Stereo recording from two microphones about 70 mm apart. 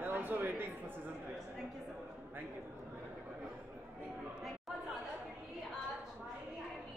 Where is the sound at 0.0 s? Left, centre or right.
Right.